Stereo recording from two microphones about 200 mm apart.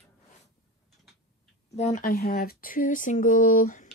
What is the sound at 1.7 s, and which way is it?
Speech, 35° left (ahead or behind).